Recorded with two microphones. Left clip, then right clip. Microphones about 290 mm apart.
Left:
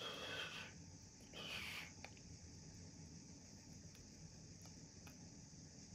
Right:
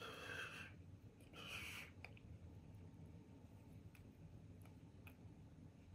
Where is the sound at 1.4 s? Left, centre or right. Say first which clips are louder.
Left 3 dB; left.